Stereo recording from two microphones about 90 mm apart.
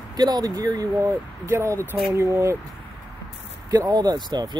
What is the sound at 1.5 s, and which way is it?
Speech, 30° right (ahead or behind).